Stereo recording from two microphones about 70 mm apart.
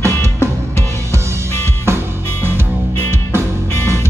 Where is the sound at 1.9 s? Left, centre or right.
Right.